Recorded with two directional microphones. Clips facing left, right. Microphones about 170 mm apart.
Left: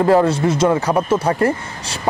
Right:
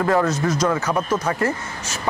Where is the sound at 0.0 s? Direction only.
30° left (ahead or behind).